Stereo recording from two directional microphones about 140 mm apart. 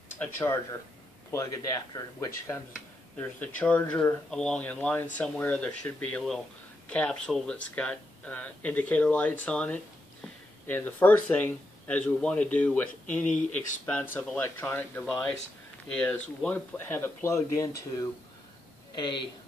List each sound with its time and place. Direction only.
0.2 s speech: 15° left (ahead or behind)
2.0 s speech: 20° left (ahead or behind)
18.9 s speech: 35° left (ahead or behind)